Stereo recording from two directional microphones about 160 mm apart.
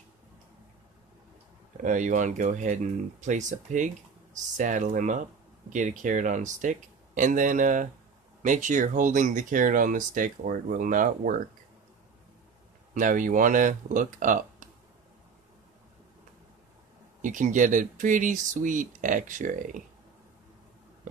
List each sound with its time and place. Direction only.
1.8 s speech: 50° right (ahead or behind)
12.9 s speech: 55° right (ahead or behind)
17.2 s speech: 55° right (ahead or behind)